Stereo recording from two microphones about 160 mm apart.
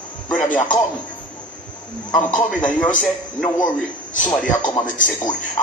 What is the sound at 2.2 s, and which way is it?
A man's voice, 10° left (ahead or behind).